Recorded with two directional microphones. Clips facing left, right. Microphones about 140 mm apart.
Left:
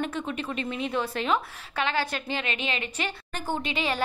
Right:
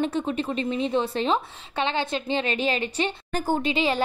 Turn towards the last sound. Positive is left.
turn(degrees=-30)  # may be behind; listen again after turning